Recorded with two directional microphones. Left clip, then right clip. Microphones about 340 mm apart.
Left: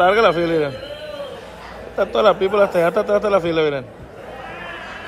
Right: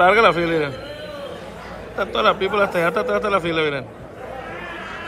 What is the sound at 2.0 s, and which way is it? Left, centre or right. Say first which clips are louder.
Speech: left 3 dB; centre.